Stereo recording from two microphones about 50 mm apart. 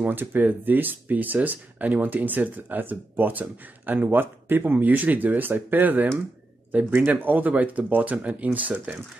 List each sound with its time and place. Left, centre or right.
0.0 s speech: right